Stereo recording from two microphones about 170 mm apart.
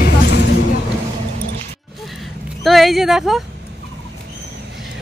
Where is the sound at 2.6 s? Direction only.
Centre (ahead or behind).